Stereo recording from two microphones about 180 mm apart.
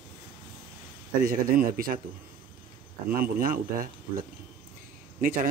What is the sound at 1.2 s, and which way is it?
Speech, 50° right (ahead or behind).